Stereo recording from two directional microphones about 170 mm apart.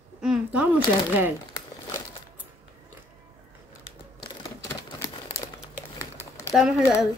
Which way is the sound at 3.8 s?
25° left (ahead or behind).